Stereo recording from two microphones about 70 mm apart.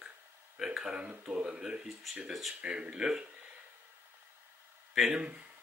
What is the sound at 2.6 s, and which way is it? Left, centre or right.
Speech, centre.